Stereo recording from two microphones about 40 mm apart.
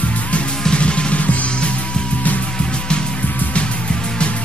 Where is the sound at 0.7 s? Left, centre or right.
Left.